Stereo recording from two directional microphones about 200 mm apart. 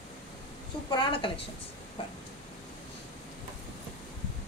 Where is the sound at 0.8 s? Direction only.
25° left (ahead or behind).